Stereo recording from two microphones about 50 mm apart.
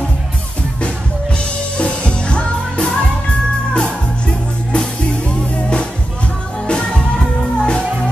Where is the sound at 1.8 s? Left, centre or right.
Left.